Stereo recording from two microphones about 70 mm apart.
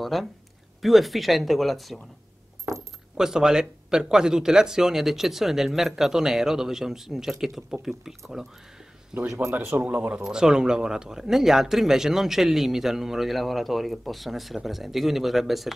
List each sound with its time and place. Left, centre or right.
0.0 s speech: centre
3.2 s speech: centre
9.3 s speech: right
9.7 s speech: right
10.2 s speech: centre